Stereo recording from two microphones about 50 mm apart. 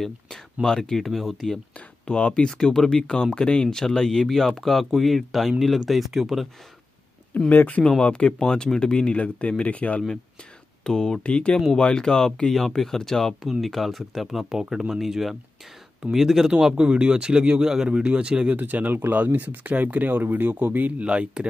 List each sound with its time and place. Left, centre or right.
0.0 s speech: centre
2.0 s speech: left
2.4 s speech: centre
7.3 s speech: left
8.0 s speech: left
10.8 s speech: centre
16.5 s speech: centre
18.5 s speech: right
21.0 s speech: right